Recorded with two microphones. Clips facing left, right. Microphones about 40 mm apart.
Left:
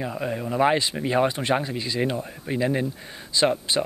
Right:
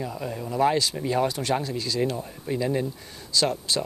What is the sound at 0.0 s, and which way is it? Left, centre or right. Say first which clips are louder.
Speech: left 3 dB; left.